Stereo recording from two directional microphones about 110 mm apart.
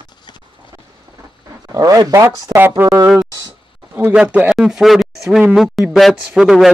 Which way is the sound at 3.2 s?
35° right (ahead or behind).